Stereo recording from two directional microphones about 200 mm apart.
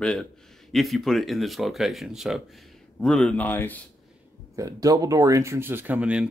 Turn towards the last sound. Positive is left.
turn(degrees=-5)  # may be behind; listen again after turning